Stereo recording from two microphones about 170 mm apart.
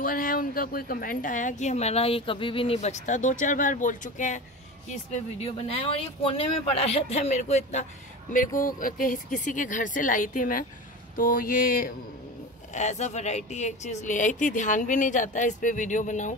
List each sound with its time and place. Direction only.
0.0 s a woman's voice: 55° left (ahead or behind)
5.4 s speech: 35° left (ahead or behind)
8.5 s a woman's voice: 55° left (ahead or behind)
11.1 s mantra: 55° left (ahead or behind)
12.7 s a woman's voice: 45° left (ahead or behind)